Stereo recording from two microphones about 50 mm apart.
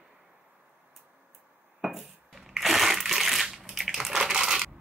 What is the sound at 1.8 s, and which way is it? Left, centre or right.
Shuffling cards, centre.